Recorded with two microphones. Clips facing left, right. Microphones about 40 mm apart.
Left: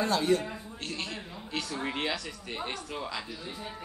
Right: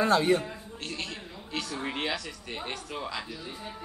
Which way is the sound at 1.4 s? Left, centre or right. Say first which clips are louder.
Even; centre.